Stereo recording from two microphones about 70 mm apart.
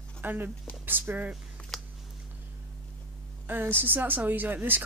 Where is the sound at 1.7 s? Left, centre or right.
Centre.